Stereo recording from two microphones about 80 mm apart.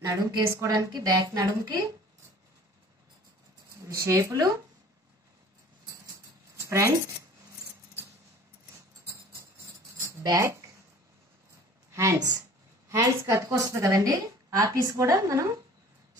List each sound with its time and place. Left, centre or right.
0.0 s a woman's voice: right
0.7 s a woman's voice: right
3.8 s a woman's voice: right
6.5 s a sound: right
10.4 s speech: right
11.9 s a woman's voice: right